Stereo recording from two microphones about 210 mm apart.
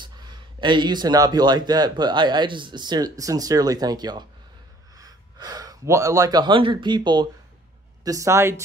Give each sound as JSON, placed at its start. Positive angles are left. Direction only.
{"t": 0.0, "sound": "speech", "side_deg": -20}